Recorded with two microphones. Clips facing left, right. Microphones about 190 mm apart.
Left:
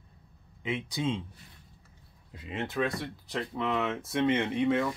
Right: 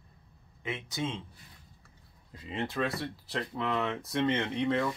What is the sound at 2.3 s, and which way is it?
Speech, 5° left (ahead or behind).